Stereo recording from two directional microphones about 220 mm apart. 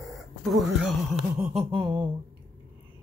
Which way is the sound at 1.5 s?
25° right (ahead or behind).